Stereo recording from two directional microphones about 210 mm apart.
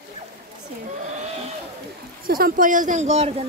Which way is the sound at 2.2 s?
45° right (ahead or behind).